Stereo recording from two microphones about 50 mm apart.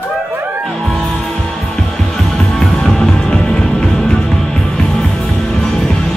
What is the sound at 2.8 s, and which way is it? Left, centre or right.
Music, centre.